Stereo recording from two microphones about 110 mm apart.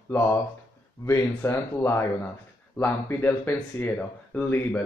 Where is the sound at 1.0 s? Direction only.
25° left (ahead or behind).